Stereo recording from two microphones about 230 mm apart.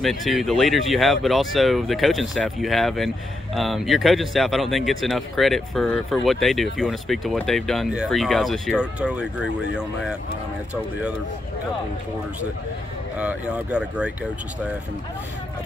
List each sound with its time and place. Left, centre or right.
0.0 s speech: centre
13.2 s speech: centre